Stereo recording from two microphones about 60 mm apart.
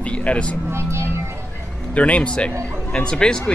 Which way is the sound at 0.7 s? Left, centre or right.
Right.